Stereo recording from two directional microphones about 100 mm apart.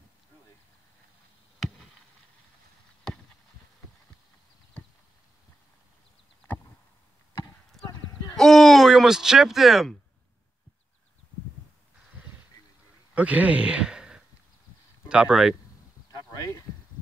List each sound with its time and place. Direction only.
7.8 s clip-clop: 5° left (ahead or behind)
8.4 s speech: 5° left (ahead or behind)
13.1 s a man's voice: 15° right (ahead or behind)
16.3 s speech: 35° left (ahead or behind)